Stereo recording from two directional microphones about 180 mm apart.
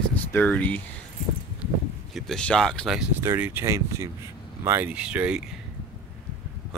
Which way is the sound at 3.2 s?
15° right (ahead or behind).